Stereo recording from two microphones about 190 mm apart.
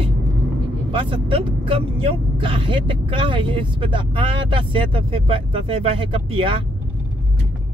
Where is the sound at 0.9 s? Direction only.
25° right (ahead or behind).